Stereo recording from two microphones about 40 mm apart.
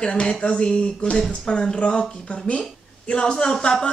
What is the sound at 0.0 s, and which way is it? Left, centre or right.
Speech, left.